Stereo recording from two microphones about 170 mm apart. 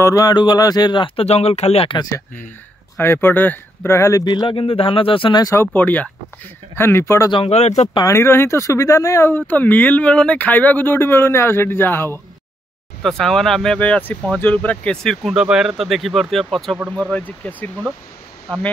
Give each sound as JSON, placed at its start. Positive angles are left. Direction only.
{"t": 0.0, "sound": "speech", "side_deg": 20}
{"t": 3.0, "sound": "speech", "side_deg": 15}
{"t": 7.3, "sound": "speech", "side_deg": 40}
{"t": 7.9, "sound": "speech", "side_deg": 20}
{"t": 13.0, "sound": "speech", "side_deg": 5}